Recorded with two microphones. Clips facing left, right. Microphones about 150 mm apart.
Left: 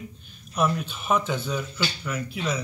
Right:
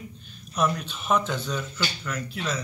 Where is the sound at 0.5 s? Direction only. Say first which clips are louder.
Left 1 dB; 10° left (ahead or behind).